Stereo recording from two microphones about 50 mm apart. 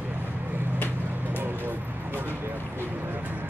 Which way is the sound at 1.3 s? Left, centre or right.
Right.